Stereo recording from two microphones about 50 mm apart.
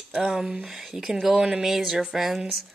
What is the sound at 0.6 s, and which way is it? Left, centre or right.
Speech, centre.